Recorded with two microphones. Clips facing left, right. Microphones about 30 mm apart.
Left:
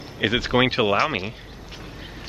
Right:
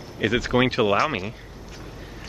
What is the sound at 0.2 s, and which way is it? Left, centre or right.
Speech, left.